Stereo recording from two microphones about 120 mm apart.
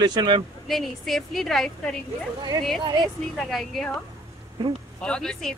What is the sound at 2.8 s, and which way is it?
Speech, 35° right (ahead or behind).